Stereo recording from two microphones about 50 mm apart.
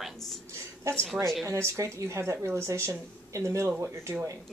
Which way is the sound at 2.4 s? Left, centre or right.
Right.